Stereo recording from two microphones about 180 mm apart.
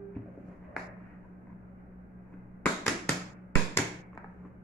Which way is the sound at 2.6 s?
10° left (ahead or behind).